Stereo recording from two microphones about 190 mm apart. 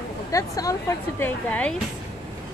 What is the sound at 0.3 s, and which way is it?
Speech, 20° left (ahead or behind).